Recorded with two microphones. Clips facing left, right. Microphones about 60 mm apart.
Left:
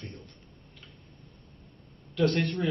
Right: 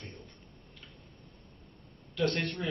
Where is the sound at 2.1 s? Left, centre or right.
Centre.